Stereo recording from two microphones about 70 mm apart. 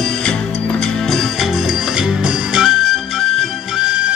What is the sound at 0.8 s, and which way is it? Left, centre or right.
Music, centre.